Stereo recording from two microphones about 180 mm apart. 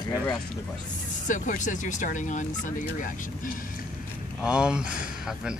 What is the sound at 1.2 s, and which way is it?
Speech, 45° left (ahead or behind).